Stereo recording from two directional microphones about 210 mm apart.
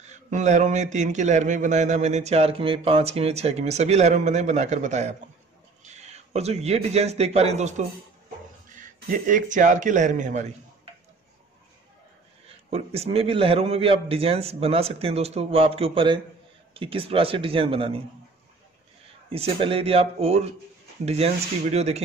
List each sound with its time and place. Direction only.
0.0 s a man's voice: 35° right (ahead or behind)
12.4 s a man's voice: 30° right (ahead or behind)
19.3 s a man's voice: 25° right (ahead or behind)